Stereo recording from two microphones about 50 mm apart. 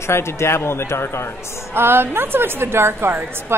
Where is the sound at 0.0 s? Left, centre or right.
Left.